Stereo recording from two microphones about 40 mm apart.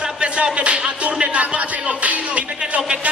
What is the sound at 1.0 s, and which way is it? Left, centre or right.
Music, right.